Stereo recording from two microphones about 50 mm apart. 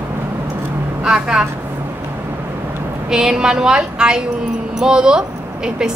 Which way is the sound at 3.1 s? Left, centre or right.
Centre.